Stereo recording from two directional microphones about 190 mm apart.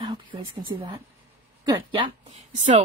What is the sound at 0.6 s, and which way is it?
A woman's voice, 30° right (ahead or behind).